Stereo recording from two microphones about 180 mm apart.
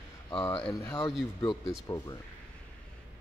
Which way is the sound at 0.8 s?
15° left (ahead or behind).